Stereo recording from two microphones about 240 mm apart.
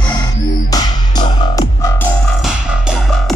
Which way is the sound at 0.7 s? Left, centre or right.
Centre.